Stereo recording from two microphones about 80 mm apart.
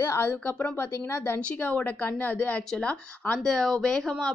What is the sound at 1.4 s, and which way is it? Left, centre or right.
Speech, centre.